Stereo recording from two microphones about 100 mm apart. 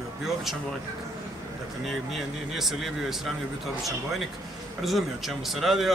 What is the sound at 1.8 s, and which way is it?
A man's voice, centre (ahead or behind).